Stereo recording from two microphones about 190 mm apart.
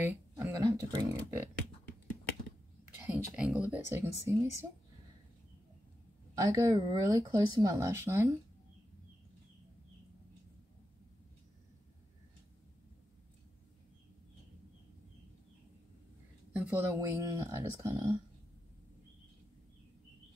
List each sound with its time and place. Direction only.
0.0 s speech: 15° right (ahead or behind)
3.1 s speech: 5° right (ahead or behind)
6.3 s speech: 20° right (ahead or behind)
16.5 s speech: 10° right (ahead or behind)